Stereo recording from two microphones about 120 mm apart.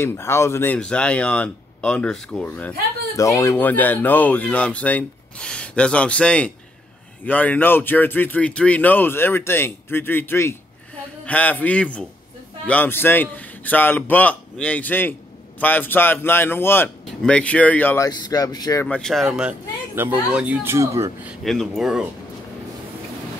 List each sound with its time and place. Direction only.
0.0 s speech: 20° left (ahead or behind)
0.7 s speech: 10° left (ahead or behind)
3.2 s speech: 25° left (ahead or behind)
18.0 s speech: 35° left (ahead or behind)
18.9 s speech: 5° left (ahead or behind)
20.6 s speech: 25° right (ahead or behind)
21.5 s speech: centre (ahead or behind)